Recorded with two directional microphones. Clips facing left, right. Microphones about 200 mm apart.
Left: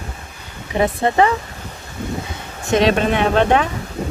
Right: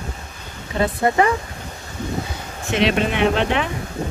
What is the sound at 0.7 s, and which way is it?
Speech, 25° left (ahead or behind).